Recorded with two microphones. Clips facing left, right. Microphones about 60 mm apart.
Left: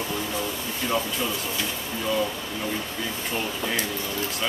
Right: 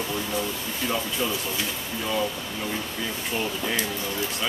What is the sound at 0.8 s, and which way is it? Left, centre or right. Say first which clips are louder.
Speech: left 1 dB; centre.